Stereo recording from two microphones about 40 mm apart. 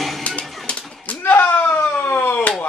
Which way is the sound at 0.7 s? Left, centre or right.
Left.